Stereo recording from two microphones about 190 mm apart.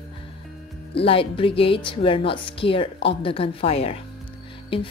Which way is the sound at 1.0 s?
30° left (ahead or behind).